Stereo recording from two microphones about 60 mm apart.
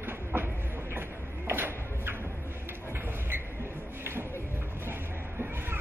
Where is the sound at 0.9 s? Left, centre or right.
Right.